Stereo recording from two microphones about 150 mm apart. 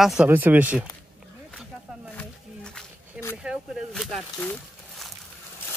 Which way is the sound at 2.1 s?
10° left (ahead or behind).